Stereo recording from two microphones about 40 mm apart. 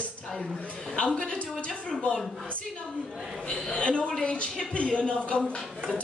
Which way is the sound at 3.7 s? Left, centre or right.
Left.